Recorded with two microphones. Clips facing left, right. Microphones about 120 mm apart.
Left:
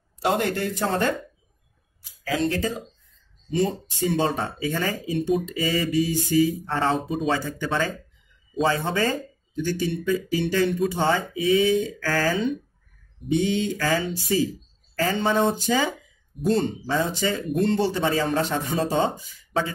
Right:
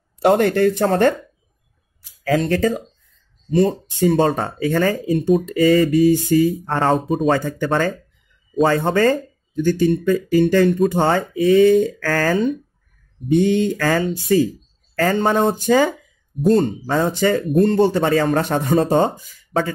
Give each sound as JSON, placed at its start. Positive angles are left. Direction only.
{"t": 0.2, "sound": "speech", "side_deg": -55}
{"t": 2.2, "sound": "speech", "side_deg": -50}